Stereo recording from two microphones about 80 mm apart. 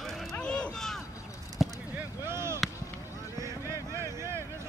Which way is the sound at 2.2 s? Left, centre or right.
Right.